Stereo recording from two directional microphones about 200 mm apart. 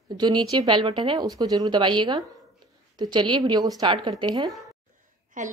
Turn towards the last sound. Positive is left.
turn(degrees=-40)  # may be behind; listen again after turning